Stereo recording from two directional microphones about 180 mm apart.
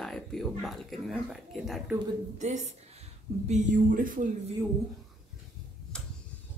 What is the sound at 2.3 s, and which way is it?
A woman's voice, 40° right (ahead or behind).